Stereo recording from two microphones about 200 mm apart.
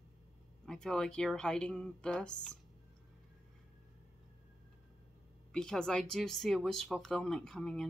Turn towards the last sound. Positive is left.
turn(degrees=5)  # may be behind; listen again after turning